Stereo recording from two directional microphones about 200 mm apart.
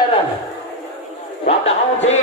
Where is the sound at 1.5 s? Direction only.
30° left (ahead or behind).